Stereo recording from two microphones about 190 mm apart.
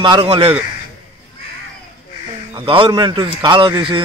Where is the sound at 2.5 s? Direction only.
30° right (ahead or behind).